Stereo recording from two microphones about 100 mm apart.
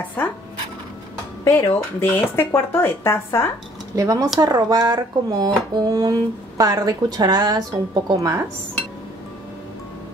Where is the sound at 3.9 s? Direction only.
35° right (ahead or behind).